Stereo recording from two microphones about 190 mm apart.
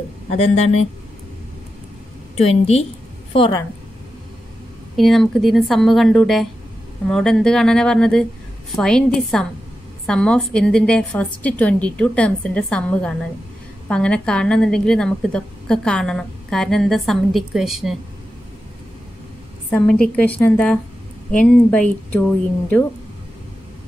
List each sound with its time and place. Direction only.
0.3 s speech: 35° left (ahead or behind)
2.3 s a woman's voice: 35° left (ahead or behind)
4.9 s a woman's voice: centre (ahead or behind)
19.7 s a woman's voice: 5° left (ahead or behind)